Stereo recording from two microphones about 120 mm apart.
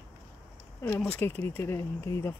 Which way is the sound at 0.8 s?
15° left (ahead or behind).